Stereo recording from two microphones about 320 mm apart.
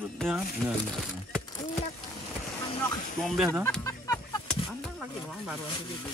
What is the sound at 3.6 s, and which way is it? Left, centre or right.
Chicken, centre.